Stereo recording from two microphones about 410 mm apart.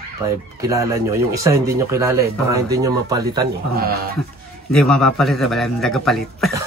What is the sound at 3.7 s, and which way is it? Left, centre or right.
Speech, right.